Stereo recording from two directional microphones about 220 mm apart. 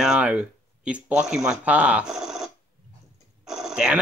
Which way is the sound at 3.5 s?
Centre (ahead or behind).